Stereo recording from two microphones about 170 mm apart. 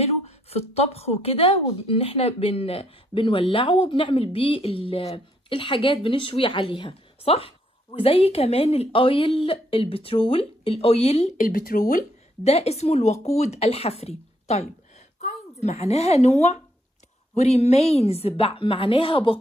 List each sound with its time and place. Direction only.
0.0 s a woman's voice: 35° left (ahead or behind); by 11.8 s 55° left (ahead or behind)
12.4 s speech: 40° left (ahead or behind)